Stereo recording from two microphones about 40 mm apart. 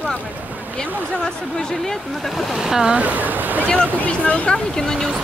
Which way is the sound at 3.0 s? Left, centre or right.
Right.